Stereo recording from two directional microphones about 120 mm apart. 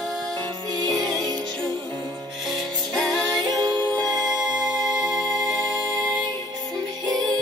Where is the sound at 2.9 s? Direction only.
Centre (ahead or behind).